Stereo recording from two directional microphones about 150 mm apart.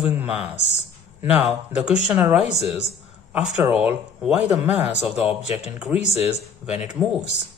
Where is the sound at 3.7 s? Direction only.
5° right (ahead or behind).